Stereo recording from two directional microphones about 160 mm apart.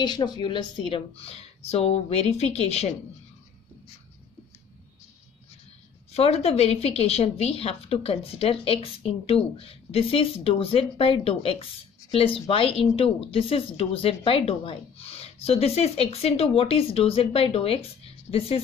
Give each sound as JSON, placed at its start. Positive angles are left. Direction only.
{"t": 0.0, "sound": "a woman's voice", "side_deg": 25}
{"t": 6.1, "sound": "a woman's voice", "side_deg": 40}
{"t": 18.3, "sound": "a woman's voice", "side_deg": 15}